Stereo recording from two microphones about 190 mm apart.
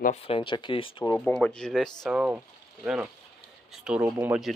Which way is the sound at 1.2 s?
5° left (ahead or behind).